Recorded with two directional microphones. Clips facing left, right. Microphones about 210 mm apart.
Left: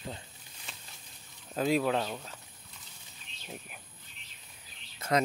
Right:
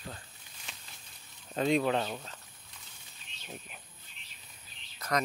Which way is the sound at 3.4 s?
10° left (ahead or behind).